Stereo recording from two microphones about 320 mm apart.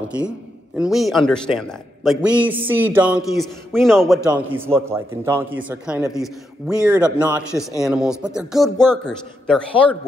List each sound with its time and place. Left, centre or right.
0.7 s a man's voice: centre